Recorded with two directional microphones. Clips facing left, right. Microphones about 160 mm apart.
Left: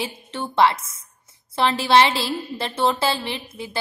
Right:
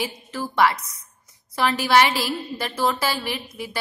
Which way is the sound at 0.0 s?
25° left (ahead or behind).